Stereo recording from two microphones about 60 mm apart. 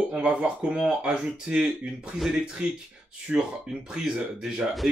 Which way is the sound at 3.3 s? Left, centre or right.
Centre.